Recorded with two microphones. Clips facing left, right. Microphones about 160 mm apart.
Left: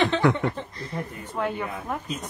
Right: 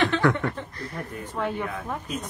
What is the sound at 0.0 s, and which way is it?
Speech, 15° left (ahead or behind).